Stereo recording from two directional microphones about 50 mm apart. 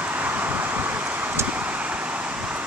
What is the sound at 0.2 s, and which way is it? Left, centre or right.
Vehicle, right.